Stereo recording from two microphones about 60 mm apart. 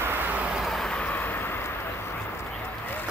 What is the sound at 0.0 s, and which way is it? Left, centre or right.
Vehicle, right.